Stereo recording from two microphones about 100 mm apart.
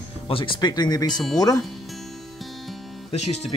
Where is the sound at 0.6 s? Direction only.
45° left (ahead or behind).